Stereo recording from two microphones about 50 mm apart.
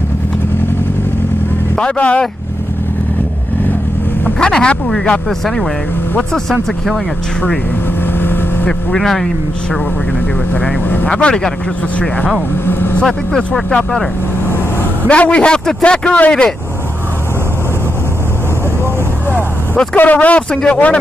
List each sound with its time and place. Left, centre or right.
1.8 s speech: left
4.4 s speech: centre
8.6 s speech: centre
11.1 s speech: left
12.6 s vehicle: left
13.4 s speech: left
15.0 s speech: left
20.0 s speech: left